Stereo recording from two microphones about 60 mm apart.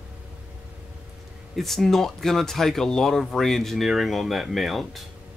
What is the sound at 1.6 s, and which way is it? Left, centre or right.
Speech, centre.